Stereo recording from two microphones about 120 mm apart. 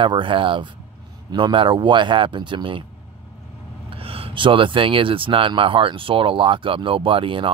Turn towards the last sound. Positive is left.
turn(degrees=-45)  # may be behind; listen again after turning